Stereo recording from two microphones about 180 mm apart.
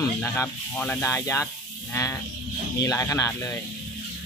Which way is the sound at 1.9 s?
15° left (ahead or behind).